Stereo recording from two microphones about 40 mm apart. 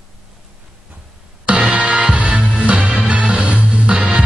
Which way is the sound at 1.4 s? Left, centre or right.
Right.